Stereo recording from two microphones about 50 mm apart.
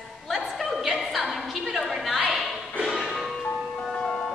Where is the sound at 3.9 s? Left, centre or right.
Centre.